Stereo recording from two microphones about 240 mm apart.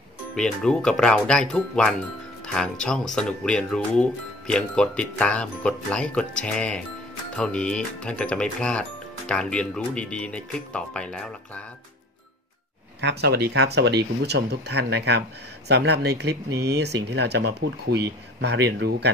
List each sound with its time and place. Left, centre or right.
0.4 s speech: centre
13.0 s speech: right